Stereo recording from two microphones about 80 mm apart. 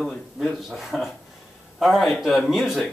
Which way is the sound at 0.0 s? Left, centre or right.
Centre.